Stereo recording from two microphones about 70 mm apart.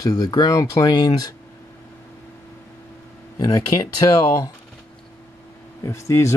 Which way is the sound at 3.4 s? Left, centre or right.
Left.